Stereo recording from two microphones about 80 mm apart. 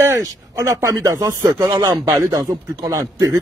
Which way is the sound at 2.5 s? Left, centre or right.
Right.